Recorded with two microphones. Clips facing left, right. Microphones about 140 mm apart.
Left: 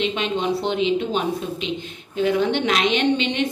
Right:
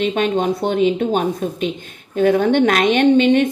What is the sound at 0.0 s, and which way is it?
A woman's voice, 50° right (ahead or behind).